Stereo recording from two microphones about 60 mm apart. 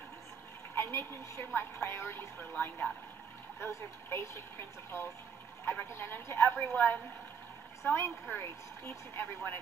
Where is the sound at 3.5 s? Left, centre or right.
Left.